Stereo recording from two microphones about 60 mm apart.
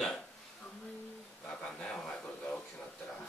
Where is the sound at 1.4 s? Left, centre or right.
Centre.